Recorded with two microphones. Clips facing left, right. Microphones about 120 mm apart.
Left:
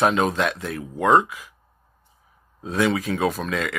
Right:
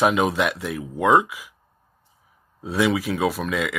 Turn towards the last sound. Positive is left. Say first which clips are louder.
# right 1 dB
turn(degrees=-5)  # may be behind; listen again after turning